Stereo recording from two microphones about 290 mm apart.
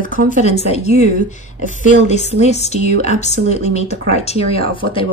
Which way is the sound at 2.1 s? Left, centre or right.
Left.